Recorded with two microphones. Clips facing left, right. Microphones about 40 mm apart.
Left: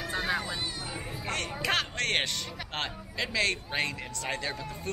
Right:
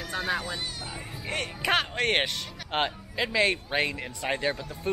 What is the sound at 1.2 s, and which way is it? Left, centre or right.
Speech, centre.